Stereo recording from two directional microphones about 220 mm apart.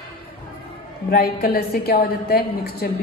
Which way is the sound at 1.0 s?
45° left (ahead or behind).